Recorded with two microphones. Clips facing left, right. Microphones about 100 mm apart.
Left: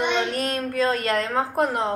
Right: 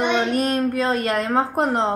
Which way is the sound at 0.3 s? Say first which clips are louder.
Right 6 dB; 20° right (ahead or behind).